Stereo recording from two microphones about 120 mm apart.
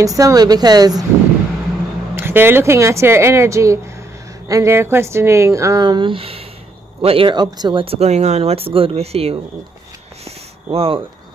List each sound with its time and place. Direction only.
0.0 s speech: 30° right (ahead or behind)
2.1 s a woman's voice: 20° right (ahead or behind); by 7.2 s 55° right (ahead or behind)
7.2 s speech: 35° right (ahead or behind)
7.8 s speech: 60° right (ahead or behind)
10.2 s a sound: 55° right (ahead or behind)